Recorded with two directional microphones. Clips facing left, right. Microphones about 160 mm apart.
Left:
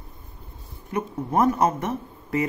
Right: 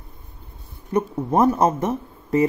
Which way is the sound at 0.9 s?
30° right (ahead or behind).